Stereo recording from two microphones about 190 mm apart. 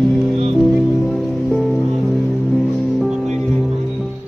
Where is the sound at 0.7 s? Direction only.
Centre (ahead or behind).